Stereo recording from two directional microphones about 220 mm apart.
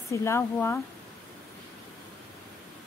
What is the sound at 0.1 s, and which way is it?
Speech, 10° left (ahead or behind).